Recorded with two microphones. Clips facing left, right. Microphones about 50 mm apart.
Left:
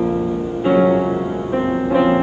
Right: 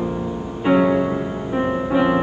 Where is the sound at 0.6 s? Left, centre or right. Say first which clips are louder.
Left 2 dB; centre.